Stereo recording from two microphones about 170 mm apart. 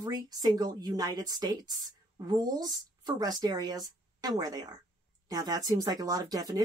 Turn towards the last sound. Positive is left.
turn(degrees=-20)  # may be behind; listen again after turning